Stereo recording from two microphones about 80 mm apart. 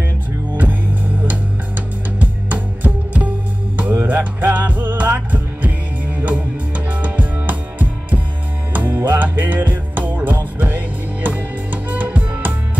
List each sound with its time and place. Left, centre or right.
0.6 s music: right